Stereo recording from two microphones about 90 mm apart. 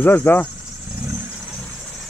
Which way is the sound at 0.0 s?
20° left (ahead or behind).